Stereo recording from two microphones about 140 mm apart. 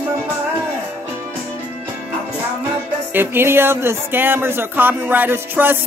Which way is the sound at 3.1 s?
15° right (ahead or behind).